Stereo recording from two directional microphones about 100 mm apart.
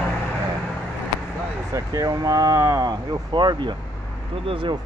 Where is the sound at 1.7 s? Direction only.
35° right (ahead or behind).